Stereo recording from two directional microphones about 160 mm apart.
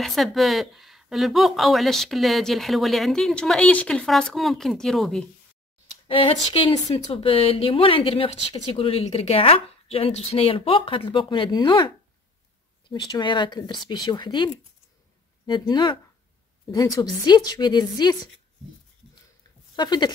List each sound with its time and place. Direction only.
0.0 s speech: centre (ahead or behind)
6.0 s speech: 35° left (ahead or behind)
12.9 s a woman's voice: 30° left (ahead or behind)
19.7 s speech: 25° left (ahead or behind)